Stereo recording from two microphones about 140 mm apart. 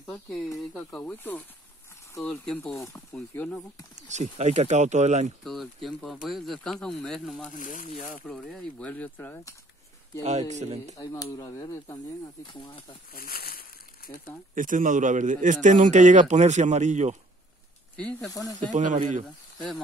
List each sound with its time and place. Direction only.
0.0 s a sound: 5° left (ahead or behind)
0.7 s speech: 5° left (ahead or behind)
3.9 s speech: 55° right (ahead or behind)
5.4 s speech: centre (ahead or behind)
7.4 s speech: 70° left (ahead or behind)
8.3 s speech: 5° left (ahead or behind)
10.5 s speech: 55° right (ahead or behind)
11.0 s speech: 25° left (ahead or behind)
13.1 s a sound: 90° left
14.5 s speech: 70° right (ahead or behind); by 17.2 s 55° right (ahead or behind)
17.9 s speech: 10° left (ahead or behind)
18.3 s speech: 25° left (ahead or behind)
18.7 s speech: 60° right (ahead or behind)